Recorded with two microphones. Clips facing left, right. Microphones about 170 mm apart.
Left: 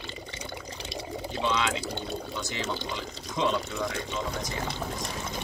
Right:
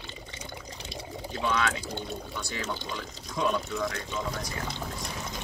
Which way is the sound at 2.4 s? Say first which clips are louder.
Left 1 dB; 20° left (ahead or behind).